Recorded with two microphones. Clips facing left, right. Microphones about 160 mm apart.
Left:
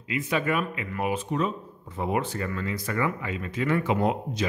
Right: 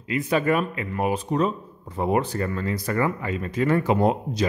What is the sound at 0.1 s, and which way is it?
Speech, 40° right (ahead or behind).